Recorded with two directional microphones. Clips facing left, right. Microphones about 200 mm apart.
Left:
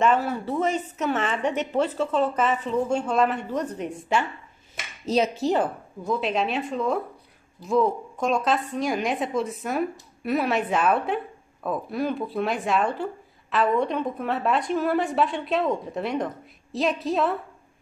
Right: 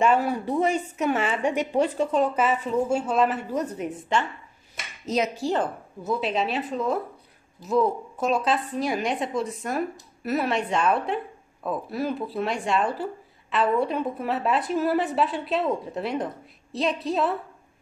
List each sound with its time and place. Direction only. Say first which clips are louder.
0.0 s a woman's voice: right 1 dB; 10° right (ahead or behind)
4.1 s a woman's voice: left 1 dB; 5° left (ahead or behind)
5.0 s speech: left 3 dB; 30° left (ahead or behind)
5.4 s a woman's voice: left 2 dB; 15° left (ahead or behind)
6.0 s speech: left 1 dB; centre (ahead or behind)